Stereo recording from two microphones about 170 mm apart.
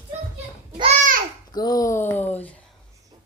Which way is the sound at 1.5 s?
20° left (ahead or behind).